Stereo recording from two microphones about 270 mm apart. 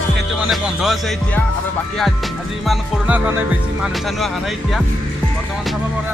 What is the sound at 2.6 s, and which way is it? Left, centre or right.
Music, centre.